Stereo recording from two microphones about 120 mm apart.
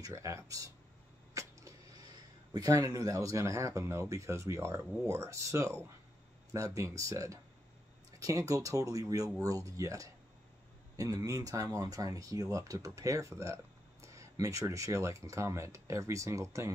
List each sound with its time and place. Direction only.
0.0 s speech: 25° right (ahead or behind)